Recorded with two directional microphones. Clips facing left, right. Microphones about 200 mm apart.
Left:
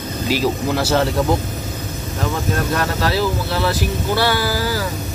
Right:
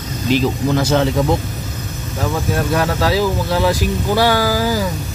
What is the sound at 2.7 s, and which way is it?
Speech, 10° right (ahead or behind).